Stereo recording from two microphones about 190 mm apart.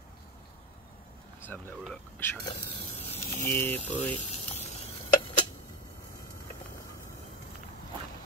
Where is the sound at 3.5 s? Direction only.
10° left (ahead or behind).